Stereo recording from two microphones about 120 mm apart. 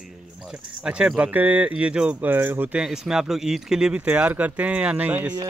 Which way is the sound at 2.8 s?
5° right (ahead or behind).